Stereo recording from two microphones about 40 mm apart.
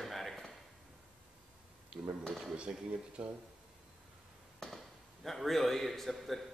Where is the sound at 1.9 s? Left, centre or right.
Right.